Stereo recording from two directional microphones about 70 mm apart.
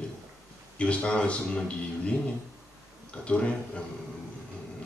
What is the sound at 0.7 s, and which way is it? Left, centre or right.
Speech, centre.